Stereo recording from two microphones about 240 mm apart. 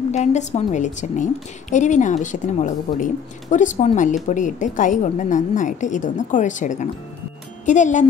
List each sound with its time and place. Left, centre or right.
0.1 s a woman's voice: left